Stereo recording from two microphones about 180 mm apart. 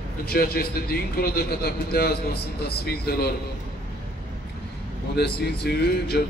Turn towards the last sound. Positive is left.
turn(degrees=65)  # may be behind; listen again after turning